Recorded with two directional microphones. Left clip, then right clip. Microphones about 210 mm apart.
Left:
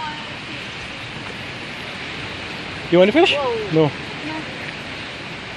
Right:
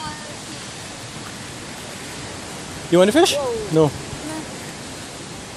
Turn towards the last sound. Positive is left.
turn(degrees=-25)  # may be behind; listen again after turning